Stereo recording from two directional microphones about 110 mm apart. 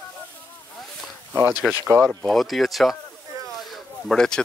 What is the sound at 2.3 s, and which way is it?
Speech, centre (ahead or behind).